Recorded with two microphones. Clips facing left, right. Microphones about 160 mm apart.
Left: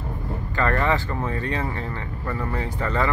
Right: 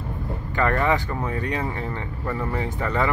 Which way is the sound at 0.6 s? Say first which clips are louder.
Right 1 dB; 15° right (ahead or behind).